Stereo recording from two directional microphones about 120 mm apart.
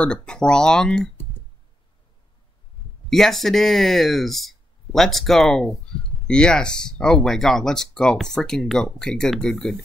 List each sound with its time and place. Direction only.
0.0 s speech: 10° left (ahead or behind)
3.1 s speech: 5° left (ahead or behind)